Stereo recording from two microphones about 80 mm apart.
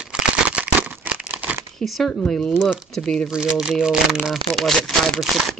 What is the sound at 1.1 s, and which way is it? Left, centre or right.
Crumpling, centre.